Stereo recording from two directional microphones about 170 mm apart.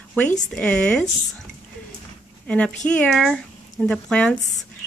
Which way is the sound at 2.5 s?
5° left (ahead or behind).